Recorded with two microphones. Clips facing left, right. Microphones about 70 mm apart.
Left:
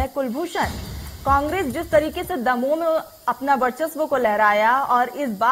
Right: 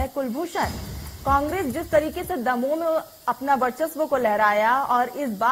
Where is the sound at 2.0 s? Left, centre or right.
Left.